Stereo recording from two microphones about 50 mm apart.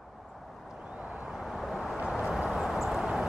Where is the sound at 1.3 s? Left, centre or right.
Centre.